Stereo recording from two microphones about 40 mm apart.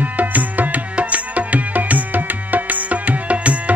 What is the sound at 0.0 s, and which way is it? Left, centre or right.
Music, right.